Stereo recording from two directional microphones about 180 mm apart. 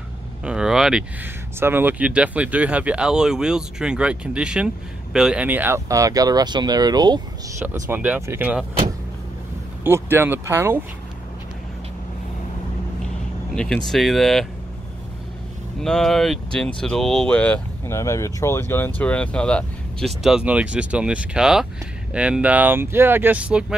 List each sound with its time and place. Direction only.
0.4 s speech: 5° right (ahead or behind); by 7.6 s 25° right (ahead or behind)
7.8 s speech: 10° right (ahead or behind)
9.8 s speech: 15° right (ahead or behind)
13.6 s speech: 5° left (ahead or behind)
15.8 s speech: centre (ahead or behind)